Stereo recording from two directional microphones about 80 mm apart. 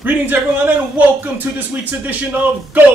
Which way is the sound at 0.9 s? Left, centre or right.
Right.